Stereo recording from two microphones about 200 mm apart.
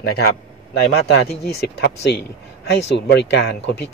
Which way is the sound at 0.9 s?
55° left (ahead or behind).